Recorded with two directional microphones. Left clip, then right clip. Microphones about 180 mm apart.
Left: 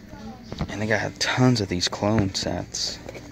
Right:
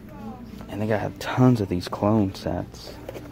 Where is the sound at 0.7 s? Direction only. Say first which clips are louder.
Left 1 dB; 10° right (ahead or behind).